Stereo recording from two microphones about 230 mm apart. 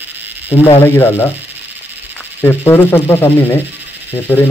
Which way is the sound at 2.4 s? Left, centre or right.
Centre.